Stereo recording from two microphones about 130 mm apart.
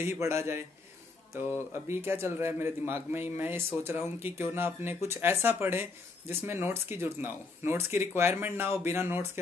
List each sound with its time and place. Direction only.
0.0 s a man's voice: 20° right (ahead or behind)